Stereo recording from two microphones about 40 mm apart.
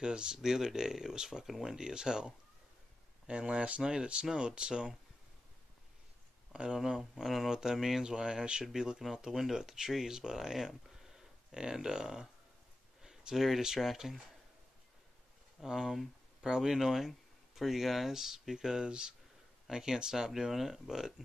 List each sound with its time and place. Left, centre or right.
0.0 s speech: right
3.3 s speech: right
6.5 s speech: right
6.8 s speech: centre
11.0 s a sound: centre
13.7 s speech: centre
15.6 s speech: centre